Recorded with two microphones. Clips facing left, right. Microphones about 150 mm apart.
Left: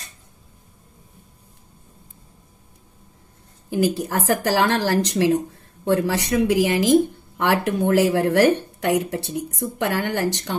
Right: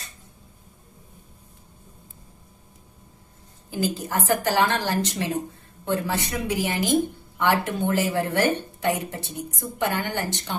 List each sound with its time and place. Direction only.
3.7 s speech: 70° left (ahead or behind)